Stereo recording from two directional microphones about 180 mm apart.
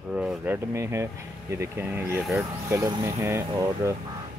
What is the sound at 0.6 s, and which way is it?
Speech, 15° right (ahead or behind).